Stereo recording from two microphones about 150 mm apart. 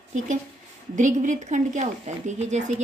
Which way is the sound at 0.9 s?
55° right (ahead or behind).